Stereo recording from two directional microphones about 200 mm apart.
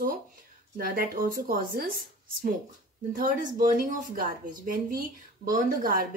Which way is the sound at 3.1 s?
45° right (ahead or behind).